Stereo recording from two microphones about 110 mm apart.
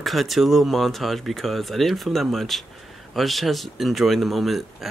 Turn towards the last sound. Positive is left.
turn(degrees=0)  # may be behind; listen again after turning